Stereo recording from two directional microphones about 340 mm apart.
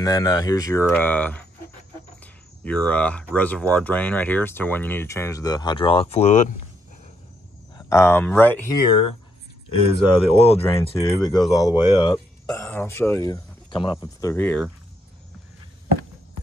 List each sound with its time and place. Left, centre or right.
0.0 s speech: centre
2.6 s speech: centre
7.7 s speech: centre